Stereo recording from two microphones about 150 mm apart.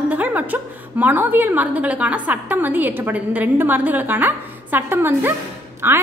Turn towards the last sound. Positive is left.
turn(degrees=-15)  # may be behind; listen again after turning